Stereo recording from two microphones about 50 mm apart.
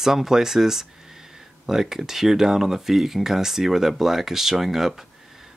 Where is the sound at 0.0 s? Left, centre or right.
Centre.